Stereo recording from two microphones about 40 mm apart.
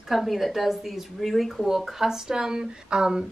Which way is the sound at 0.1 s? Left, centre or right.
Centre.